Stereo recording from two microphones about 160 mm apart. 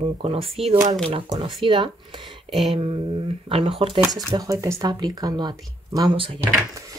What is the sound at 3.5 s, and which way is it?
Speech, 35° right (ahead or behind).